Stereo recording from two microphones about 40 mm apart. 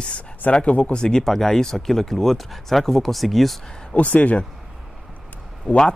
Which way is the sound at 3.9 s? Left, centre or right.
Left.